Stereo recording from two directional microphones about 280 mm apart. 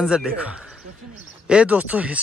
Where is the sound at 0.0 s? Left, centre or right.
Centre.